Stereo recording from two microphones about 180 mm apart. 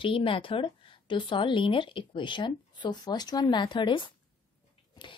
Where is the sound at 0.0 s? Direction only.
30° left (ahead or behind).